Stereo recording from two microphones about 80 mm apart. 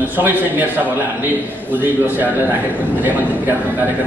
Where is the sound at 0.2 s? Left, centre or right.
Right.